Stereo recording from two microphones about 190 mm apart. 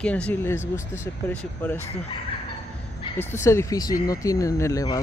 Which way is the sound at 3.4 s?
15° left (ahead or behind).